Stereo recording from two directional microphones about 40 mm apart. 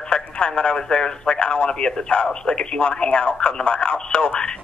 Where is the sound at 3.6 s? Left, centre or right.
Left.